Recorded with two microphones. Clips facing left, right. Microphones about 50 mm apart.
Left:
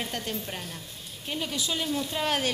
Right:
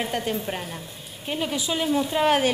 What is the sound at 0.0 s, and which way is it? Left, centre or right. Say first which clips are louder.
A woman's voice: right 7 dB; centre.